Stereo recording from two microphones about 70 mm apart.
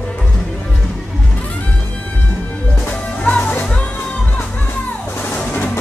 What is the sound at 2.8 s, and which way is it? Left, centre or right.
Music, centre.